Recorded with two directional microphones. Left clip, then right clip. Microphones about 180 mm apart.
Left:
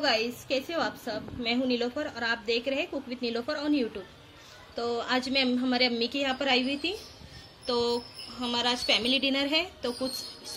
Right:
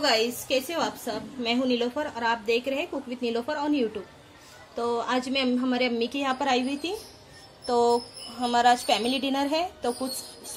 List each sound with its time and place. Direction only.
0.0 s a woman's voice: 50° right (ahead or behind)